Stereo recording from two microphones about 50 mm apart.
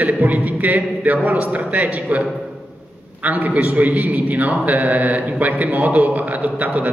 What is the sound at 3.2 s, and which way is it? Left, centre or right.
A man's voice, right.